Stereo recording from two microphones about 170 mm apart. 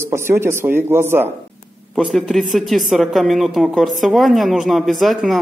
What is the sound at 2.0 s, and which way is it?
Speech, centre (ahead or behind).